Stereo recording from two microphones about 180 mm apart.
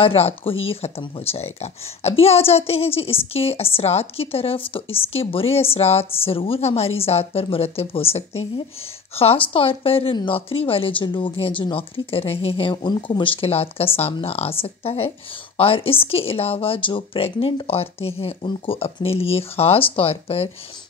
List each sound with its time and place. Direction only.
0.0 s speech: 30° left (ahead or behind)